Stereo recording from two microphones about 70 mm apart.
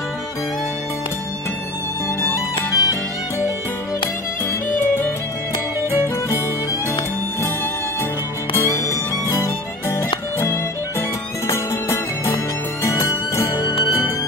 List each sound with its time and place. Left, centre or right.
2.3 s music: left
4.6 s music: left
8.5 s music: left